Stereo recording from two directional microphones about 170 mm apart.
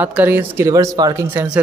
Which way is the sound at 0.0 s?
10° right (ahead or behind).